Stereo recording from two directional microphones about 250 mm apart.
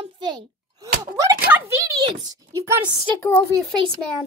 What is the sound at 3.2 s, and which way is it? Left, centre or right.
Speech, centre.